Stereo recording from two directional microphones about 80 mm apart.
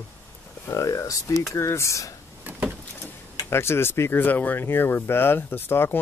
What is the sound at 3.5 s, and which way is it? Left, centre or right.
Speech, left.